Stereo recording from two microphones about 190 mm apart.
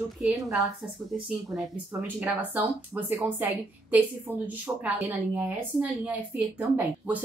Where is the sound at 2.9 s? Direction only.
10° right (ahead or behind).